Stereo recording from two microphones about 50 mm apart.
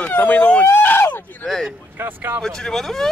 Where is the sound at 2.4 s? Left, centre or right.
Centre.